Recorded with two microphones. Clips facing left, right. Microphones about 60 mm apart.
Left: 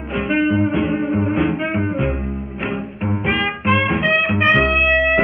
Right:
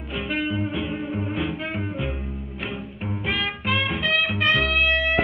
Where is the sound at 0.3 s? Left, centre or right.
Left.